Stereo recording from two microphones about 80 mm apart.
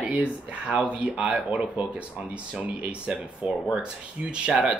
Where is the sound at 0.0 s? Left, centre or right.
Centre.